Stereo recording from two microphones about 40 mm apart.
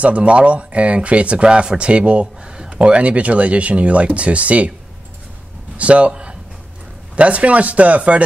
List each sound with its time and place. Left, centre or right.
0.0 s speech: right
5.8 s speech: right